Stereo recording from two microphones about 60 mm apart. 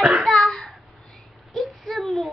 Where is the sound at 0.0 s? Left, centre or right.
Centre.